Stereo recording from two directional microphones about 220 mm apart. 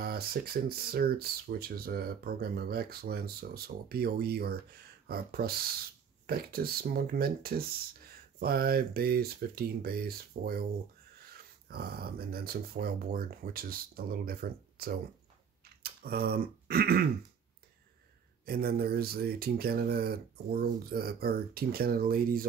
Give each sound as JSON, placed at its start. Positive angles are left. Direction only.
{"t": 0.0, "sound": "speech", "side_deg": -45}
{"t": 11.7, "sound": "speech", "side_deg": -45}
{"t": 18.4, "sound": "speech", "side_deg": -45}